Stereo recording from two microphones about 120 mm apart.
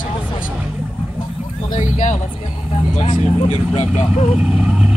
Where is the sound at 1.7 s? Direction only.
90° left.